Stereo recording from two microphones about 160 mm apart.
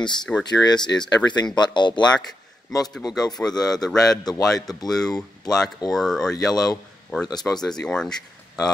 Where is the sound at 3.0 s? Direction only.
25° left (ahead or behind).